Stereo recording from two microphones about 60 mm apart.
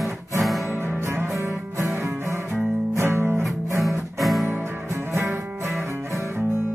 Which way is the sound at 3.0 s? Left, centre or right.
Right.